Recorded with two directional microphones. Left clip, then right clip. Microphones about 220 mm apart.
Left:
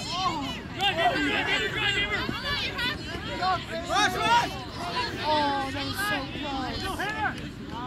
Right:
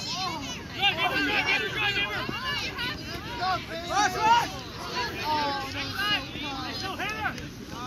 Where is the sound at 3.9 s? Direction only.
45° left (ahead or behind).